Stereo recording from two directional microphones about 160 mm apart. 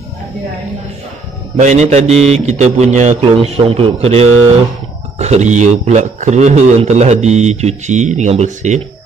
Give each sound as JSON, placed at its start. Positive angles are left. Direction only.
{"t": 1.6, "sound": "a man's voice", "side_deg": -45}